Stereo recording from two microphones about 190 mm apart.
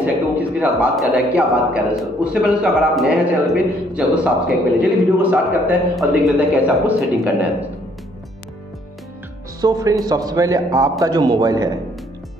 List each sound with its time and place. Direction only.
0.0 s a man's voice: 5° right (ahead or behind)
9.6 s a man's voice: 20° right (ahead or behind)